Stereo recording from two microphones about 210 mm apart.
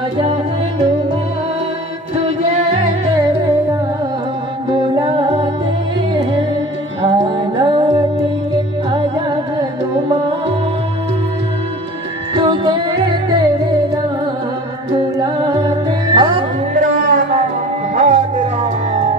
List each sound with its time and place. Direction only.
4.7 s music: 20° right (ahead or behind)
7.0 s music: 20° right (ahead or behind)
12.4 s music: 20° right (ahead or behind)
15.1 s music: 20° right (ahead or behind)
16.8 s music: 40° right (ahead or behind)